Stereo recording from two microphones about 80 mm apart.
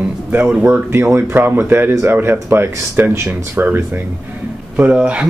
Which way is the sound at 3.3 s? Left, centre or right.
Centre.